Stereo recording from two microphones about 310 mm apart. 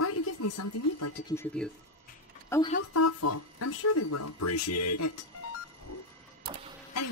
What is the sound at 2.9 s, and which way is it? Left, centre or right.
Speech, left.